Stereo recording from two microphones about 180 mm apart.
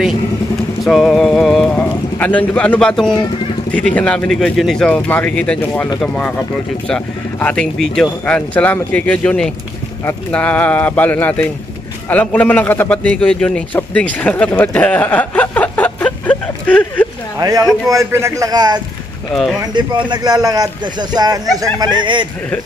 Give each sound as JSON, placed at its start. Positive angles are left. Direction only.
{"t": 0.8, "sound": "a sound", "side_deg": 0}
{"t": 3.9, "sound": "a man's voice", "side_deg": 5}
{"t": 17.4, "sound": "speech", "side_deg": -20}